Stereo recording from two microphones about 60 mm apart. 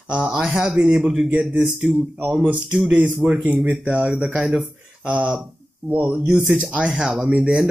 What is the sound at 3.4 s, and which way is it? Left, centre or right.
Speech, right.